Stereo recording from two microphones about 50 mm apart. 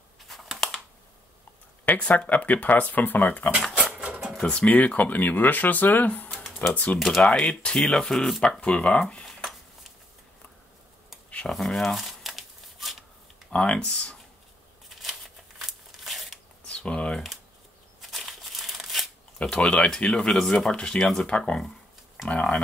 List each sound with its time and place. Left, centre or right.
0.3 s typing: centre
2.0 s speech: left
3.7 s dog: right
4.4 s speech: left
4.7 s speech: left
7.3 s speech: centre
11.5 s crumpling: centre
13.5 s speech: left
15.6 s crumpling: centre
16.6 s typing: left
18.1 s crumpling: centre
19.5 s speech: centre
21.0 s speech: centre
21.3 s speech: centre